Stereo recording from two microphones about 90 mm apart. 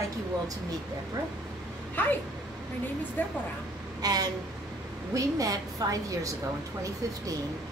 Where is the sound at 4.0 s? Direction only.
45° right (ahead or behind).